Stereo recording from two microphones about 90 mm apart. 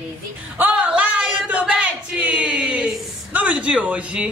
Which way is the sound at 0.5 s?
15° right (ahead or behind).